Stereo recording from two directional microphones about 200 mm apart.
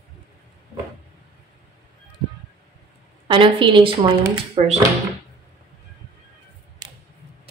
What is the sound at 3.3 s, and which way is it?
Speech, 25° right (ahead or behind).